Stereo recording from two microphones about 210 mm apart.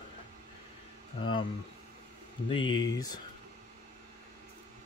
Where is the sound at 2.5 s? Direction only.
20° left (ahead or behind).